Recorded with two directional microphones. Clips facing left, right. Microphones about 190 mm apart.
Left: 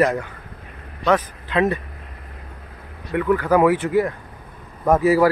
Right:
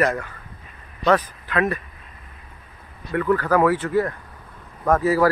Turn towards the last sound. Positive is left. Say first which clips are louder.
# left 2 dB
turn(degrees=10)  # may be behind; listen again after turning